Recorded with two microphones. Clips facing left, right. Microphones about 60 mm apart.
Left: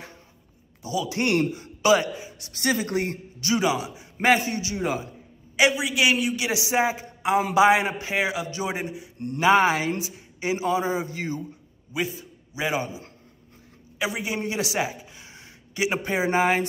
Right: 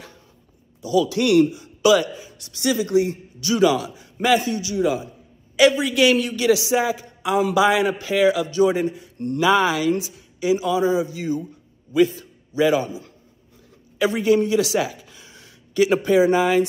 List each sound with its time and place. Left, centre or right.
0.8 s a man's voice: left
2.5 s a man's voice: left
3.4 s a man's voice: left
4.2 s a man's voice: left
5.6 s a man's voice: centre
6.5 s a man's voice: left
11.9 s a man's voice: centre
14.0 s a man's voice: centre
14.4 s speech: left